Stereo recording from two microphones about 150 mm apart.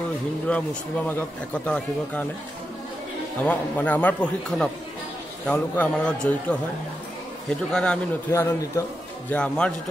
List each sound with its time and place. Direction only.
0.5 s speech: 10° left (ahead or behind)
3.4 s speech: 10° left (ahead or behind)
7.7 s speech: 5° left (ahead or behind)
8.3 s speech: 20° left (ahead or behind)
9.3 s speech: 5° left (ahead or behind)